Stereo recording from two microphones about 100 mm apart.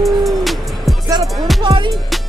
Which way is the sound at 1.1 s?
45° right (ahead or behind).